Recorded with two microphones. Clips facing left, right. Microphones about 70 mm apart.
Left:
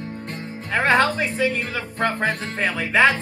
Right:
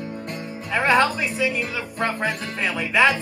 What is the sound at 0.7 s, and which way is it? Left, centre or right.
Speech, left.